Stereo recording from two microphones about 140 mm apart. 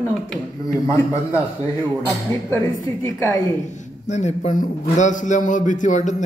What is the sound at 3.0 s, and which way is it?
Speech, 25° left (ahead or behind).